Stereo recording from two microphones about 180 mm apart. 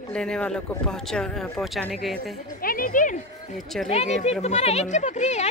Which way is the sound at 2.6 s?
50° left (ahead or behind).